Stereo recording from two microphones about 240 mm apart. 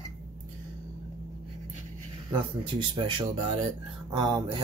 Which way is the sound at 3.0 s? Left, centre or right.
Right.